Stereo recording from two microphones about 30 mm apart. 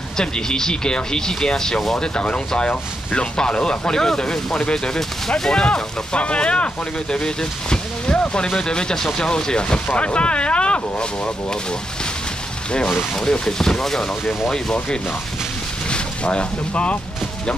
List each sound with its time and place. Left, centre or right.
0.2 s speech: left
2.2 s speech: left
3.3 s speech: left
6.1 s speech: left
7.2 s speech: left
9.3 s speech: left
12.7 s speech: left
15.9 s speech: left